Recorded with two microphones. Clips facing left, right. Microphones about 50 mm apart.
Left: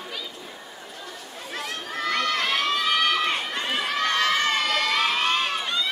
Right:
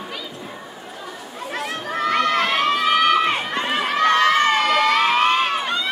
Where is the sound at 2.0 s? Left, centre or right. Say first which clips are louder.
Right 6 dB; centre.